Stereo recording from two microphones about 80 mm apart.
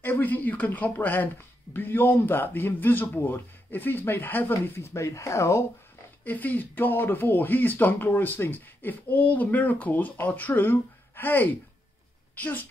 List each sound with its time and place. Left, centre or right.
0.0 s speech: left
6.2 s speech: left